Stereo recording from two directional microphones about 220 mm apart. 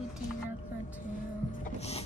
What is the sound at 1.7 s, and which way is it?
Speech, 30° left (ahead or behind).